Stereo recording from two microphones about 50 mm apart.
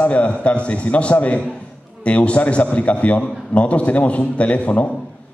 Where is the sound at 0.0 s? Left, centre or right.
Left.